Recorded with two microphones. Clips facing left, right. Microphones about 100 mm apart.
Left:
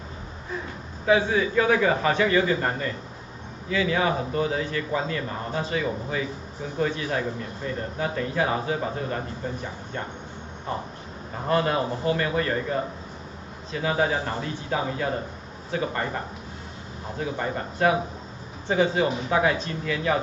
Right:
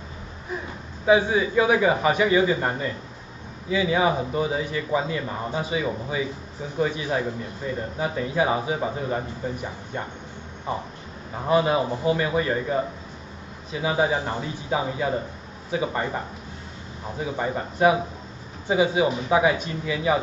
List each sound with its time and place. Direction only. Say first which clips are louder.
1.0 s a man's voice: right 2 dB; 15° right (ahead or behind)
17.2 s a man's voice: right 2 dB; 15° right (ahead or behind)